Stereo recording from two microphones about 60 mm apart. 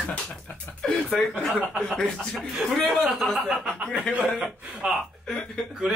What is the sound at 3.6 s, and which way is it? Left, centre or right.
Speech, centre.